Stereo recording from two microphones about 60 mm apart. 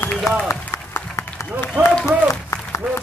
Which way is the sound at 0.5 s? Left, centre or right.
Left.